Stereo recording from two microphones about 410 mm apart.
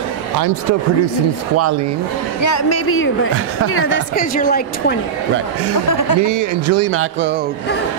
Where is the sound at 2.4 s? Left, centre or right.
Left.